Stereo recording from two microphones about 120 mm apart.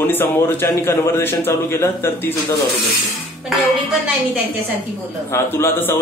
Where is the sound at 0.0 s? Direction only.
15° left (ahead or behind).